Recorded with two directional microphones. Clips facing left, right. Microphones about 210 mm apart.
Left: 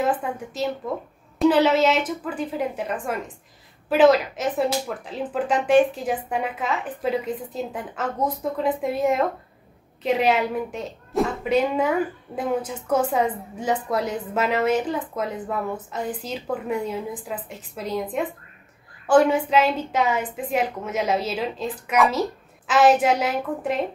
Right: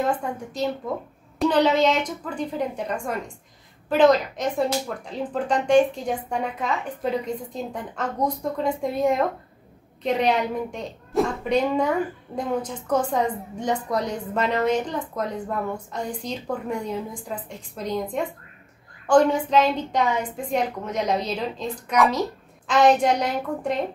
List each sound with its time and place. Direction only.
0.0 s a woman's voice: 5° left (ahead or behind)